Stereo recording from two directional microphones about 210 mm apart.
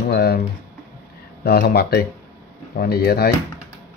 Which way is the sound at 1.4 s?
50° left (ahead or behind).